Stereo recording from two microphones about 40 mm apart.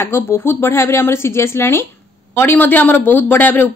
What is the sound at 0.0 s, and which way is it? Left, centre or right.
Speech, left.